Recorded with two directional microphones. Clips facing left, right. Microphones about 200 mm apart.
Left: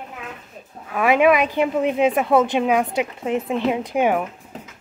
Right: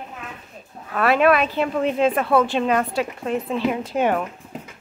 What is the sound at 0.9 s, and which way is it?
Speech, 15° left (ahead or behind).